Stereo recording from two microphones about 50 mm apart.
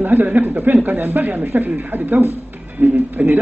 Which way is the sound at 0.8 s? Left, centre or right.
Right.